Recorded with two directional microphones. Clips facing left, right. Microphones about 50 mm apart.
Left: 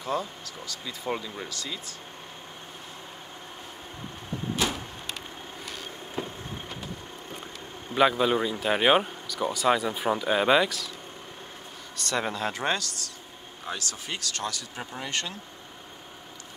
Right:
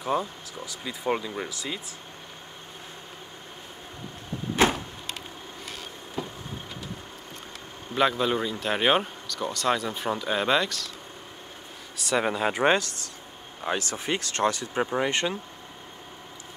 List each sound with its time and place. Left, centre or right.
0.0 s speech: centre
4.6 s vehicle: right
6.2 s a sound: left
7.9 s speech: centre
12.0 s speech: centre